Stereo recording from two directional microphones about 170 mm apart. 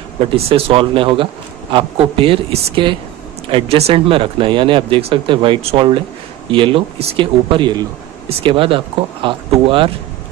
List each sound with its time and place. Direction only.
0.5 s speech: 35° right (ahead or behind)